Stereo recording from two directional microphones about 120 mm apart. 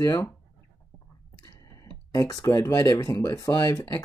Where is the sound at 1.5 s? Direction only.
30° left (ahead or behind).